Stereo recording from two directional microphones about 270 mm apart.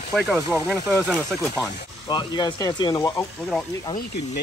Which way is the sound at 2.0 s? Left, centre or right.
Centre.